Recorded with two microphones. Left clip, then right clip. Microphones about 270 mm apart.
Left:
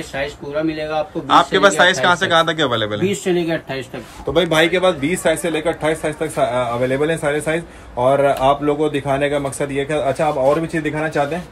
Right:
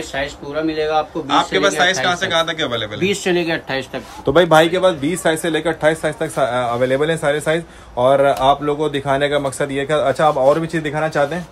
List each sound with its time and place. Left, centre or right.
0.1 s a man's voice: centre
4.3 s speech: centre
5.0 s speech: right
5.5 s a man's voice: centre